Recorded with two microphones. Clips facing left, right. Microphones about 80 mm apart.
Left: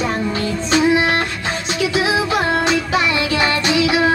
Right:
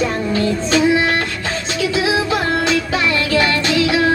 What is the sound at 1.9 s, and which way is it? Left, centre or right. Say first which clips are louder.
Music: even; centre.